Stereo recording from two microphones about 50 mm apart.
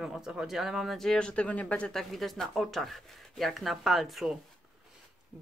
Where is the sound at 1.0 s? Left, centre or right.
Centre.